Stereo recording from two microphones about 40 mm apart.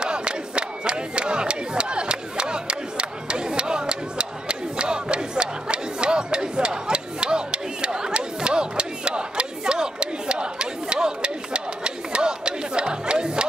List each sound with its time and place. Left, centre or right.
0.0 s crowd: right